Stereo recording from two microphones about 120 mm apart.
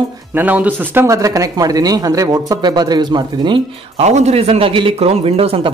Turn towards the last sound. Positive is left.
turn(degrees=-50)  # may be behind; listen again after turning